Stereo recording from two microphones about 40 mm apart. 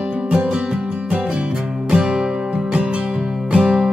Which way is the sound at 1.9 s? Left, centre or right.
Centre.